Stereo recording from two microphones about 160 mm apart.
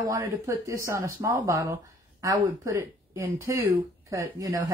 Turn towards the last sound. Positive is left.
turn(degrees=-20)  # may be behind; listen again after turning